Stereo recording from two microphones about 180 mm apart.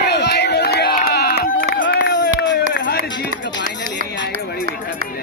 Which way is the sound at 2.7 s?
65° left (ahead or behind).